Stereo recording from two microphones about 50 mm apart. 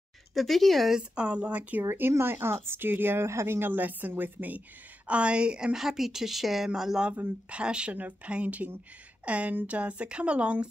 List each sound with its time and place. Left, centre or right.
0.3 s speech: centre
0.9 s speech: right
1.9 s speech: right
3.3 s speech: right
3.5 s a woman's voice: right